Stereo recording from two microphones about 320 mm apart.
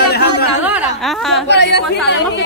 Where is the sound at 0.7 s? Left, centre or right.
Centre.